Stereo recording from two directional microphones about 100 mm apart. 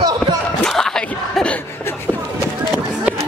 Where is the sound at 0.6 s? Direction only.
5° left (ahead or behind).